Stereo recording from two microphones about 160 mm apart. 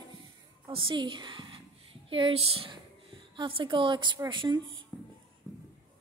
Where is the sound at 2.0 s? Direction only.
30° right (ahead or behind).